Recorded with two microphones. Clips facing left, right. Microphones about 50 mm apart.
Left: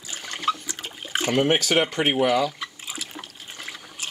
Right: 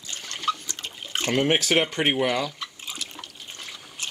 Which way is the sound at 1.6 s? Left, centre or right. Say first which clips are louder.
Left 1 dB; centre.